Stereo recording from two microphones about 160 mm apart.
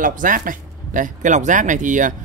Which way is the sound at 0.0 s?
55° right (ahead or behind).